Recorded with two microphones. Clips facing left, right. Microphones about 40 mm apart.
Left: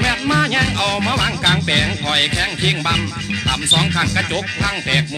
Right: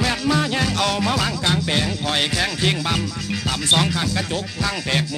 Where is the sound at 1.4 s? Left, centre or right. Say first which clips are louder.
Left 4 dB; left.